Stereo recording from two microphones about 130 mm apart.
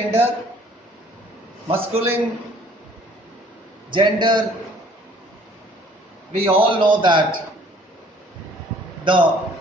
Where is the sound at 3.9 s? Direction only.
35° right (ahead or behind).